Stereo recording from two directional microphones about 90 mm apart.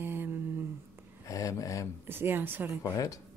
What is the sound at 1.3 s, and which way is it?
Speech, 40° left (ahead or behind).